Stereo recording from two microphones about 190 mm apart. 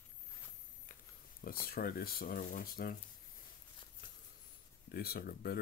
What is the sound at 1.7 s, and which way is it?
Speech, 50° left (ahead or behind).